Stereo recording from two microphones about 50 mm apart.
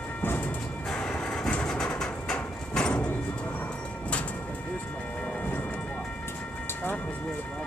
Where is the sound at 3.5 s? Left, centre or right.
Left.